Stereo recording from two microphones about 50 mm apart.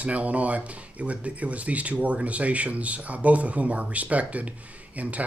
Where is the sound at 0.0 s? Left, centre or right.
Right.